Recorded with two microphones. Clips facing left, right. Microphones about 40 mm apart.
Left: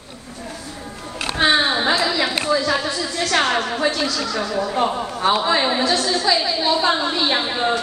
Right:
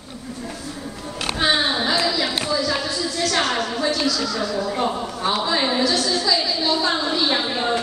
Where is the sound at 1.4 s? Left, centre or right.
Left.